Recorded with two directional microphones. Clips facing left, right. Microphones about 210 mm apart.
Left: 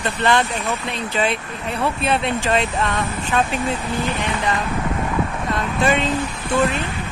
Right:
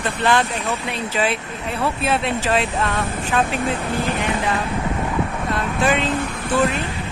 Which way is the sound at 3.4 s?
55° right (ahead or behind).